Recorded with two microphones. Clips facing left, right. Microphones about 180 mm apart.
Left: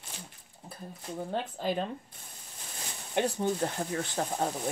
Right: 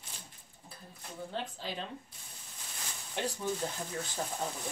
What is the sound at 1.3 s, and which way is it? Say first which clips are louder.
Speech: left 8 dB; 50° left (ahead or behind).